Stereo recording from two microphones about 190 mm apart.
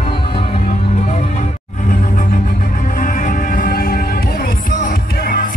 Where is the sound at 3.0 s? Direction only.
45° left (ahead or behind).